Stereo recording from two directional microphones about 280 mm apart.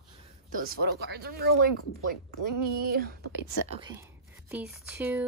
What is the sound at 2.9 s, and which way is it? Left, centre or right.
Speech, right.